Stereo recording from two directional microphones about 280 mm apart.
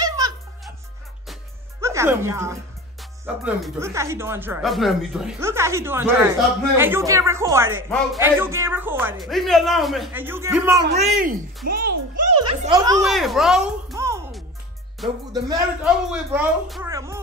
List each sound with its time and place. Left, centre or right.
0.0 s music: centre
1.8 s speech: centre
10.9 s speech: right
12.4 s a child's voice: centre
13.1 s a sound: centre
15.3 s speech: centre
16.9 s music: centre